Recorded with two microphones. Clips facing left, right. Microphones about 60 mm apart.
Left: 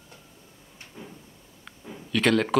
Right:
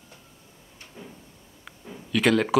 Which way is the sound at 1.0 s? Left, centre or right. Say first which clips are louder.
Even; centre.